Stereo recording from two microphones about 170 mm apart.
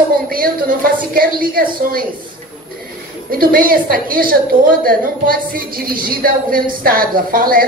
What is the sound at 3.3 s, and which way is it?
A woman's voice, 55° right (ahead or behind).